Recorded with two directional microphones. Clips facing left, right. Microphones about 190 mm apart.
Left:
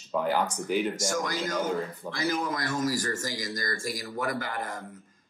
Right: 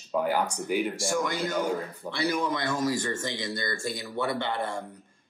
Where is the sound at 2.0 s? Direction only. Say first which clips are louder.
Right 1 dB; 10° right (ahead or behind).